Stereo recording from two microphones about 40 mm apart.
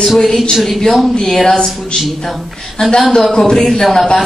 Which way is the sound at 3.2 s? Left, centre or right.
Centre.